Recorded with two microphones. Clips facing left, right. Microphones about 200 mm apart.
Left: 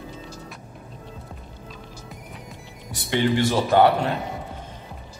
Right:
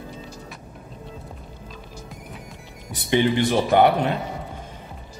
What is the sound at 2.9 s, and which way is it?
A man's voice, 20° right (ahead or behind).